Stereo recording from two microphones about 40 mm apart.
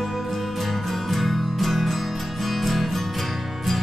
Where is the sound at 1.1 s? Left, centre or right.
Centre.